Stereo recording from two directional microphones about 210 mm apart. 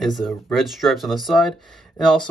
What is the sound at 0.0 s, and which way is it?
Speech, centre (ahead or behind).